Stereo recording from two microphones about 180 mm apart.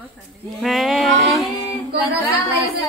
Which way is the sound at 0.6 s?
Centre (ahead or behind).